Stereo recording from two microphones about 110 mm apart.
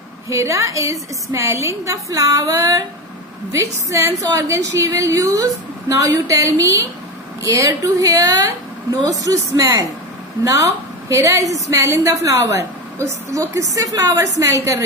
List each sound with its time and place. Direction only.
0.3 s a woman's voice: 30° right (ahead or behind)